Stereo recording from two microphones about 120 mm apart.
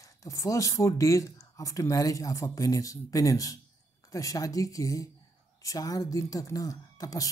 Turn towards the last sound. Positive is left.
turn(degrees=30)  # may be behind; listen again after turning